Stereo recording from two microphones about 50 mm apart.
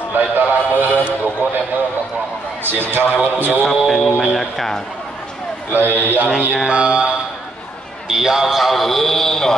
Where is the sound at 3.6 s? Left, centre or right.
Centre.